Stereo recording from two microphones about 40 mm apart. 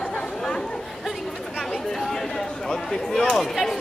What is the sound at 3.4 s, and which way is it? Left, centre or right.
Speech, centre.